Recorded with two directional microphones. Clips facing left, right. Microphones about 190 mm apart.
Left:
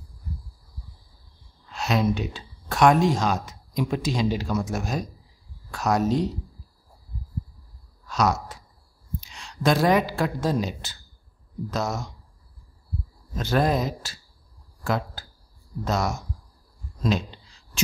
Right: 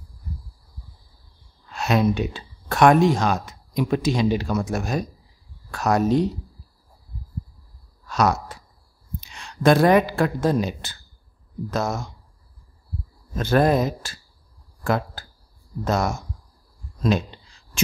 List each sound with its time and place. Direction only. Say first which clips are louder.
1.7 s speech: right 3 dB; 55° right (ahead or behind)
8.1 s a sound: right 2 dB; 60° right (ahead or behind)
9.2 s a man's voice: right 5 dB; 60° right (ahead or behind)
13.4 s speech: right 4 dB; 55° right (ahead or behind)